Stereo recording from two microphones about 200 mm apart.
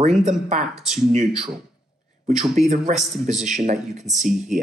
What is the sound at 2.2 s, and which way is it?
Speech, 35° right (ahead or behind).